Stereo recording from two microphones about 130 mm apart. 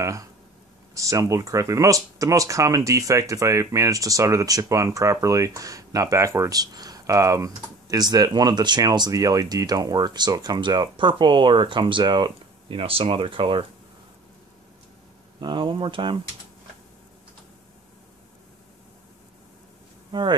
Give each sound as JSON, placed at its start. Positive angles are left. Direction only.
{"t": 0.0, "sound": "speech", "side_deg": -25}
{"t": 15.4, "sound": "speech", "side_deg": -40}
{"t": 20.1, "sound": "speech", "side_deg": -35}